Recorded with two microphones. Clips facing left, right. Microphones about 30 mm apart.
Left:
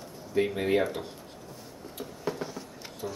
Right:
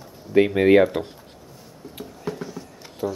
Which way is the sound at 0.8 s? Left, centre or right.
Right.